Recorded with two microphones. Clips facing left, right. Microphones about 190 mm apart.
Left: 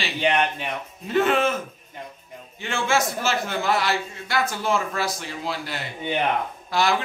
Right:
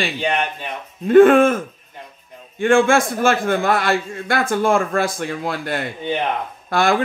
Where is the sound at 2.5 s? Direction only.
50° right (ahead or behind).